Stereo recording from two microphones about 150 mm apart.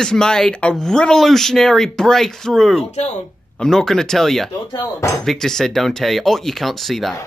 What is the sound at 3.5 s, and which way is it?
Speech, 5° left (ahead or behind).